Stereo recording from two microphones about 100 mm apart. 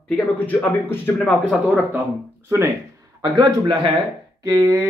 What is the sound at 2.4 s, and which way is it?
Speech, 25° right (ahead or behind).